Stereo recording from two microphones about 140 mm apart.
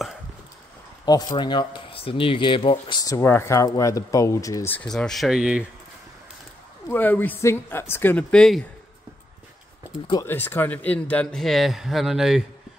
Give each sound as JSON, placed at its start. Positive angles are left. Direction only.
{"t": 1.0, "sound": "speech", "side_deg": 25}
{"t": 4.7, "sound": "speech", "side_deg": 5}
{"t": 6.9, "sound": "a woman's voice", "side_deg": 15}
{"t": 10.1, "sound": "speech", "side_deg": 15}